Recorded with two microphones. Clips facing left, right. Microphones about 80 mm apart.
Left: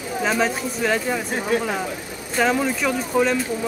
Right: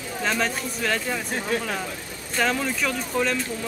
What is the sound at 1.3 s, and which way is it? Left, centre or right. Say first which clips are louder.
Speech: left 4 dB; centre.